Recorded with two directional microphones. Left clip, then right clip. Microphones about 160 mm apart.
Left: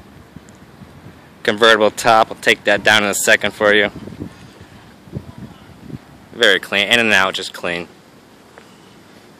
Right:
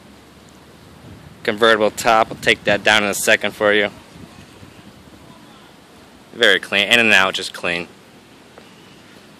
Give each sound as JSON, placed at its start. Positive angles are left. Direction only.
{"t": 1.4, "sound": "speech", "side_deg": 5}
{"t": 6.3, "sound": "speech", "side_deg": 0}